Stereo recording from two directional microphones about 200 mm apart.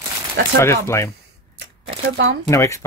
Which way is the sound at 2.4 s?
15° left (ahead or behind).